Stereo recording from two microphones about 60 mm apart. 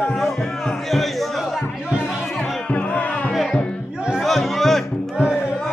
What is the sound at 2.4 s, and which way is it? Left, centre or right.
Music, left.